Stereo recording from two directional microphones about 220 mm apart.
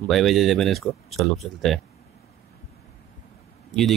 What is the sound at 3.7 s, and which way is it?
Speech, centre (ahead or behind).